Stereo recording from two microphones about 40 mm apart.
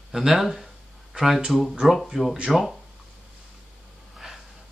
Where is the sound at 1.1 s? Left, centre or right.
Centre.